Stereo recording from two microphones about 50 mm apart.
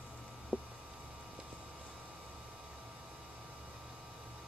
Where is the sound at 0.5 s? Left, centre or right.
Left.